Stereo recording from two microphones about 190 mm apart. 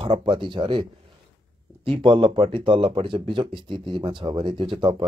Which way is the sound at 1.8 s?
25° right (ahead or behind).